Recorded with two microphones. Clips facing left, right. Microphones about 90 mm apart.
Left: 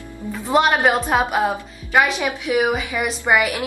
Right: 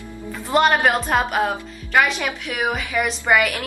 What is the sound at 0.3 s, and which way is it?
A woman's voice, 5° left (ahead or behind).